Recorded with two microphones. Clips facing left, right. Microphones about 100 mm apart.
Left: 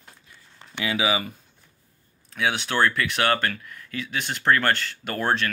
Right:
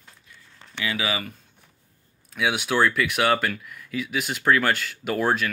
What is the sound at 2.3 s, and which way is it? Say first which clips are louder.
Speech: right 1 dB; 5° right (ahead or behind).